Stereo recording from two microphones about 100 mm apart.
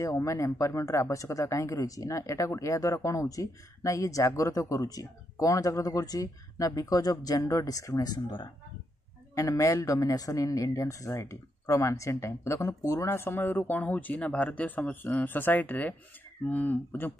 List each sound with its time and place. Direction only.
0.0 s speech: 30° left (ahead or behind)
9.3 s speech: 30° left (ahead or behind)